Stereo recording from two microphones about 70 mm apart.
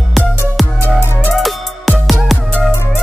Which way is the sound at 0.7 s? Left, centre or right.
Right.